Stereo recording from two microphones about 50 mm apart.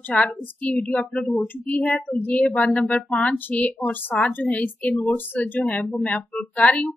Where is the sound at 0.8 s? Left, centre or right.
Centre.